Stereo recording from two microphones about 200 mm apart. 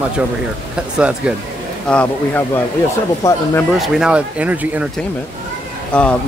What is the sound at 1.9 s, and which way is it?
Speech, 10° left (ahead or behind).